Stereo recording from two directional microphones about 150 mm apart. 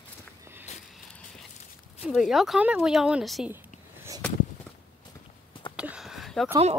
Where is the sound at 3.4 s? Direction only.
15° right (ahead or behind).